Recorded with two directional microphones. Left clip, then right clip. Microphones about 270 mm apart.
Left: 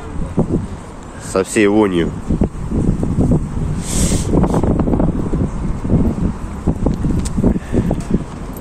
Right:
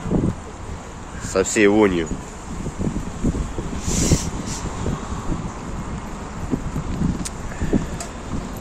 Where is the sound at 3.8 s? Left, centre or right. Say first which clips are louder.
Left 1 dB; centre.